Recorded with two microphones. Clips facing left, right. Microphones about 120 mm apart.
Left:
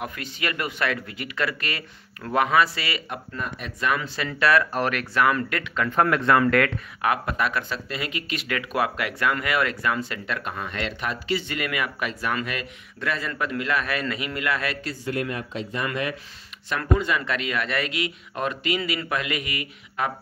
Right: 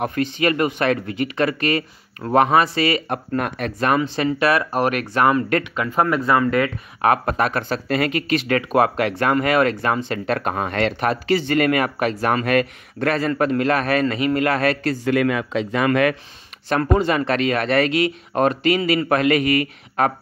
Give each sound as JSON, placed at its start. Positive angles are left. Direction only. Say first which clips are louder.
{"t": 0.0, "sound": "speech", "louder": "right 10 dB", "side_deg": -35}
{"t": 3.3, "sound": "speech", "louder": "right 10 dB", "side_deg": -65}
{"t": 4.0, "sound": "speech", "louder": "right 6 dB", "side_deg": -20}
{"t": 5.2, "sound": "speech", "louder": "right 5 dB", "side_deg": -35}
{"t": 5.6, "sound": "speech", "louder": "right 2 dB", "side_deg": -10}
{"t": 7.0, "sound": "speech", "louder": "right 6 dB", "side_deg": -40}
{"t": 8.5, "sound": "speech", "louder": "right 6 dB", "side_deg": -40}
{"t": 10.2, "sound": "speech", "louder": "right 9 dB", "side_deg": -50}
{"t": 14.8, "sound": "a man's voice", "louder": "right 9 dB", "side_deg": -75}
{"t": 16.6, "sound": "speech", "louder": "right 6 dB", "side_deg": -40}